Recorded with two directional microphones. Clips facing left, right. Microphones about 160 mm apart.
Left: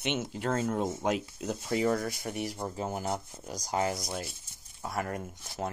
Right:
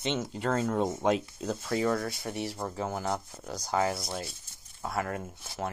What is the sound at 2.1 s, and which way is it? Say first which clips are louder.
Speech: even; 25° right (ahead or behind).